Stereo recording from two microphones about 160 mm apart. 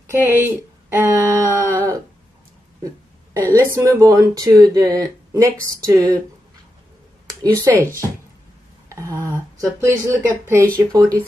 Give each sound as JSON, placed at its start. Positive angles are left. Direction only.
{"t": 0.0, "sound": "speech", "side_deg": -15}
{"t": 3.5, "sound": "speech", "side_deg": -20}
{"t": 7.2, "sound": "speech", "side_deg": -20}
{"t": 8.8, "sound": "speech", "side_deg": -20}